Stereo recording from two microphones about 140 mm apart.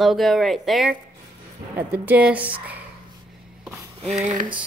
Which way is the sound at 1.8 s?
10° right (ahead or behind).